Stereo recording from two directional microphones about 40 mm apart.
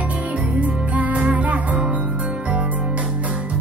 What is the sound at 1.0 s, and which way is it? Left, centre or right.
Music, right.